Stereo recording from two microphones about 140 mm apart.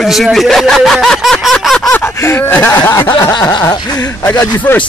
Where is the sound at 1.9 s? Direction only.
15° left (ahead or behind).